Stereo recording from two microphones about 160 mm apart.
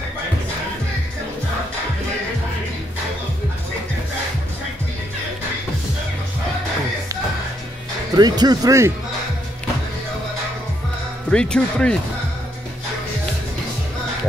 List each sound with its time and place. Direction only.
8.2 s speech: 25° right (ahead or behind)
11.2 s speech: 5° left (ahead or behind)